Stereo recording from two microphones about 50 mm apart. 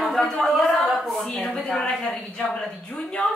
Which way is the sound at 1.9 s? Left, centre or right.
Centre.